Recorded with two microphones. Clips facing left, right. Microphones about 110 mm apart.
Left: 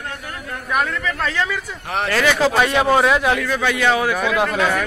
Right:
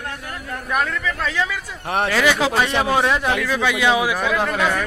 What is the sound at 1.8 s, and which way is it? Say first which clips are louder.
Speech: right 3 dB; 25° right (ahead or behind).